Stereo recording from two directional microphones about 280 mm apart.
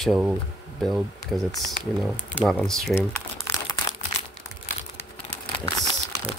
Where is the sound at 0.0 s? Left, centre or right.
Centre.